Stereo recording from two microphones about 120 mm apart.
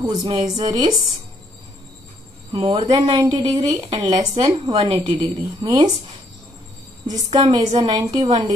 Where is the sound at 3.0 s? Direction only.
40° right (ahead or behind).